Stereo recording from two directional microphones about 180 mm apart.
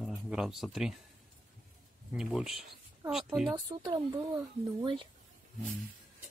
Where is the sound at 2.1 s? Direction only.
5° right (ahead or behind).